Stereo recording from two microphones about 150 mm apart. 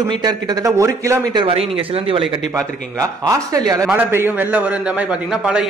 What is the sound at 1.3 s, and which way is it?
Speech, 35° right (ahead or behind).